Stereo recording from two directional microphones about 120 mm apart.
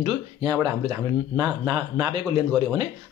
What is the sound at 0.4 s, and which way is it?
Speech, 30° right (ahead or behind).